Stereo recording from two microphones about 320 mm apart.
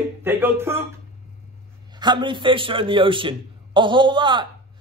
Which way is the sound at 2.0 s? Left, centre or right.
Centre.